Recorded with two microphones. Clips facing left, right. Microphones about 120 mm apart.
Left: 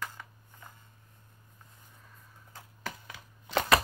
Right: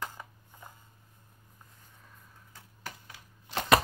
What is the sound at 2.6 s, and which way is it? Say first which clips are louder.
Typewriter: left 4 dB; 90° left.